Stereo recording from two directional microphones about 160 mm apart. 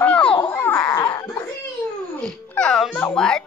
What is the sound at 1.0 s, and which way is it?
Baby cry, 25° left (ahead or behind).